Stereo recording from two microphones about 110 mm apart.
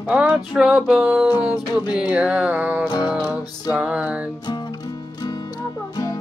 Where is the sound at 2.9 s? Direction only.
40° left (ahead or behind).